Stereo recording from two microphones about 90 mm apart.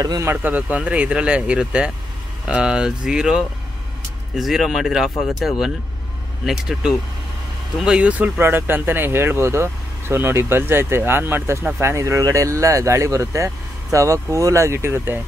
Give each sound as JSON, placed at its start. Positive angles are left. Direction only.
{"t": 0.2, "sound": "speech", "side_deg": -25}